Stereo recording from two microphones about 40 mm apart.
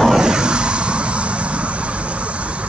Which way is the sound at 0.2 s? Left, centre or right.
Right.